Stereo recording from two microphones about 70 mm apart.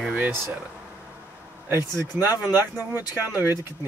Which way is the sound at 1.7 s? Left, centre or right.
Right.